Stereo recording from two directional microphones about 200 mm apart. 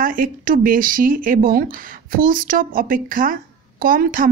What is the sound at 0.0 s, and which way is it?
Speech, 45° right (ahead or behind).